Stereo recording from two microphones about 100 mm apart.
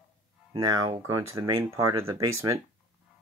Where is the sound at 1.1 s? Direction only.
35° right (ahead or behind).